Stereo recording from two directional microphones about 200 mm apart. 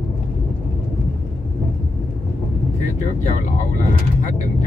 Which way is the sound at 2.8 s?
35° left (ahead or behind).